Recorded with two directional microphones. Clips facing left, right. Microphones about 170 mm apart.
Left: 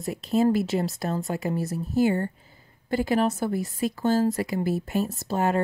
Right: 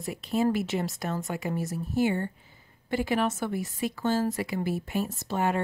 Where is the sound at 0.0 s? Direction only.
35° left (ahead or behind).